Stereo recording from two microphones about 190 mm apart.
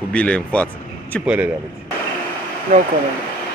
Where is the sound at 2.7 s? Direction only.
40° right (ahead or behind).